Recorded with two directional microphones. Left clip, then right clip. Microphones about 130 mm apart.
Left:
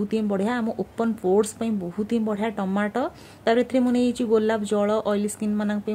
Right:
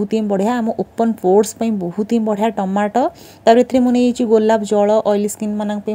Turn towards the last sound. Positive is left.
turn(degrees=-30)  # may be behind; listen again after turning